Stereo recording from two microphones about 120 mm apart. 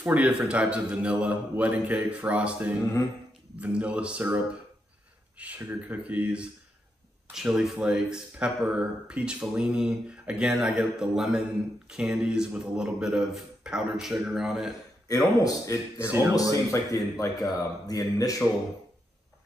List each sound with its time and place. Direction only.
0.0 s a man's voice: 10° right (ahead or behind)
15.0 s speech: 30° left (ahead or behind)
16.1 s a sound: 20° right (ahead or behind)
16.3 s speech: 30° left (ahead or behind)